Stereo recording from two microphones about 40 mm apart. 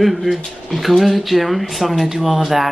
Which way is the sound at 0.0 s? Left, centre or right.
Centre.